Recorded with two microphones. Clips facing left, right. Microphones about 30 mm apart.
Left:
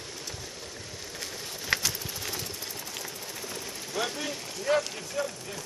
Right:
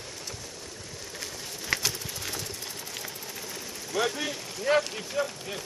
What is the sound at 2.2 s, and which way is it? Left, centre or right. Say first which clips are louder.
Engine: even; centre.